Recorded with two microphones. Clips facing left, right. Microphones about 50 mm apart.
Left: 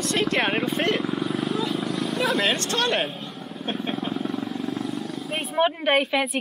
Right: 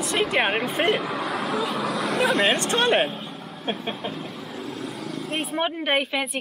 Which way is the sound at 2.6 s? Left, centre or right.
Right.